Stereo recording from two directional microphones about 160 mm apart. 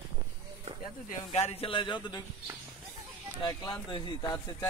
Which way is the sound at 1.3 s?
40° left (ahead or behind).